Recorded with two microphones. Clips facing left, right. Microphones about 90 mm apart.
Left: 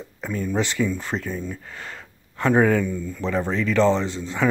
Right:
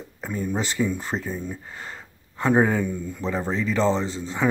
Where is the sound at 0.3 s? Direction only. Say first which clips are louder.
Left 2 dB; 20° right (ahead or behind).